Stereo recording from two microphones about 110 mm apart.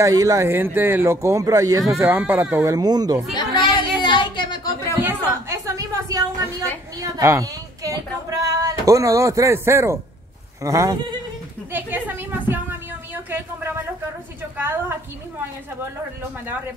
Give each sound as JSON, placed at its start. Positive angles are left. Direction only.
{"t": 0.0, "sound": "speech", "side_deg": -30}
{"t": 2.6, "sound": "speech", "side_deg": -35}
{"t": 3.3, "sound": "chatter", "side_deg": 45}
{"t": 5.0, "sound": "a sound", "side_deg": -25}
{"t": 7.0, "sound": "speech", "side_deg": -30}
{"t": 11.7, "sound": "a sound", "side_deg": -20}